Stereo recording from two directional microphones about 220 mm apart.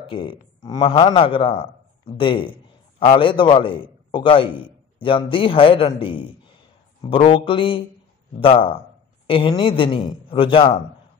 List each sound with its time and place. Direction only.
0.0 s a man's voice: 25° left (ahead or behind)